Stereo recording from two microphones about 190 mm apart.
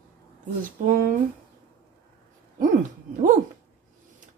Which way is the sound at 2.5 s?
40° right (ahead or behind).